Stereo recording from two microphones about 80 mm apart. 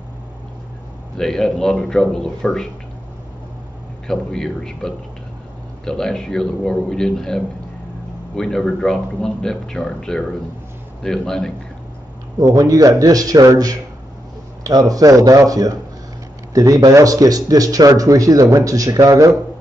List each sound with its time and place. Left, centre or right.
1.1 s speech: centre
4.1 s speech: centre
12.4 s speech: right